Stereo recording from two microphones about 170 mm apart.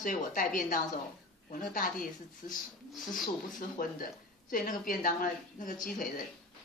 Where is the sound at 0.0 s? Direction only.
50° left (ahead or behind).